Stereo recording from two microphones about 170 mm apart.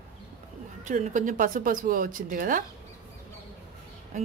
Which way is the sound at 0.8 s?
50° right (ahead or behind).